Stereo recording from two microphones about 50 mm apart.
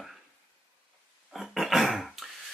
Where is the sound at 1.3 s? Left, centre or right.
Centre.